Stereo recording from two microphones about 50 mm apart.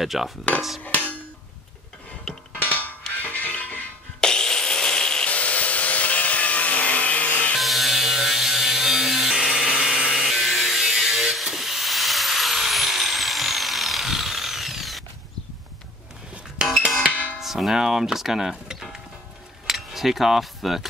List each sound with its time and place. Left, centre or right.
0.0 s hammer: centre
0.8 s hammer: left
2.3 s music: centre
2.6 s creak: left
3.2 s music: left
4.2 s wood: centre
5.3 s wood: left
7.5 s a sound: centre
17.4 s speech: centre
19.6 s cutlery: centre